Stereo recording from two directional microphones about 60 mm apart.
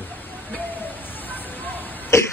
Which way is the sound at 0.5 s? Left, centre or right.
Left.